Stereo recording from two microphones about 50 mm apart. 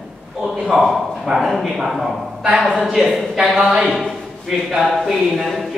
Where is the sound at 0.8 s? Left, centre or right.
Centre.